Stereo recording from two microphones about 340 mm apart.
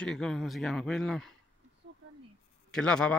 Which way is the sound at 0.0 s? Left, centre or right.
Centre.